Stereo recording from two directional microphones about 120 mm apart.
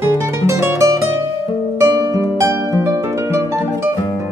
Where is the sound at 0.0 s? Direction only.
20° right (ahead or behind).